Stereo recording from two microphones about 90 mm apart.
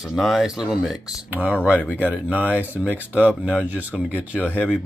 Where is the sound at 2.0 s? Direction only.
15° right (ahead or behind).